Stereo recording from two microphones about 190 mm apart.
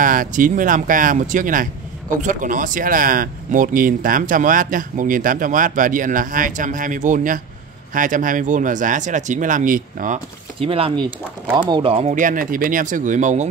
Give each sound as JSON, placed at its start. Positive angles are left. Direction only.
{"t": 0.0, "sound": "speech", "side_deg": -45}
{"t": 10.6, "sound": "speech", "side_deg": -30}